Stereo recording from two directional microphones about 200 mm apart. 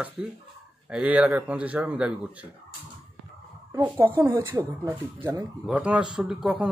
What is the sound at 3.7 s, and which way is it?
Speech, 15° right (ahead or behind).